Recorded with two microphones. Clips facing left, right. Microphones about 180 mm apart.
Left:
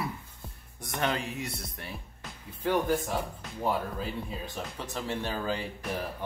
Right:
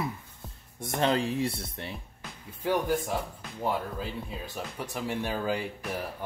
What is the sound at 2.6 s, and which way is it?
Speech, 10° right (ahead or behind).